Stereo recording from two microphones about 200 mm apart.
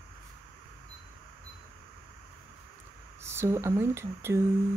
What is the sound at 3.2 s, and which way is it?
Speech, 15° right (ahead or behind).